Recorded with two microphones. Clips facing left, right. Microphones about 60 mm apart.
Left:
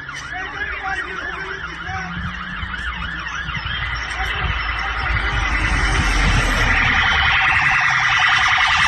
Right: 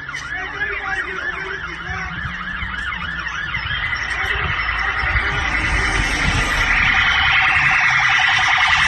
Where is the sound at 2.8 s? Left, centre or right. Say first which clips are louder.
Right 2 dB; centre.